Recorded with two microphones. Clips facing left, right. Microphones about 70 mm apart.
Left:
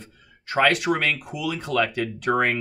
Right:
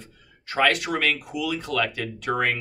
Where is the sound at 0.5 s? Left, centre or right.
Left.